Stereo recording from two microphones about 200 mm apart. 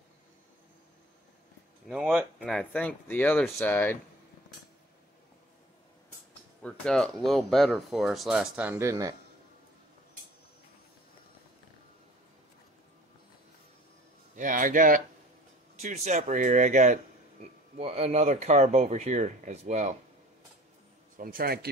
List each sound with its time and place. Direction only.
1.9 s speech: centre (ahead or behind)
6.6 s speech: 5° left (ahead or behind); by 9.1 s 15° right (ahead or behind)
14.3 s speech: 40° right (ahead or behind)
21.2 s a man's voice: 45° right (ahead or behind)